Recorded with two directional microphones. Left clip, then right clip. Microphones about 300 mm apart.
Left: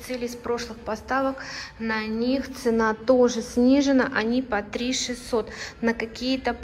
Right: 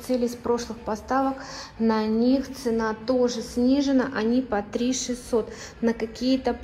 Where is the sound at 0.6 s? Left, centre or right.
Centre.